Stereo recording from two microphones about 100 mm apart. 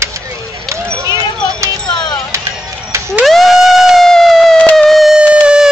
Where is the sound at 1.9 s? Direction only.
45° left (ahead or behind).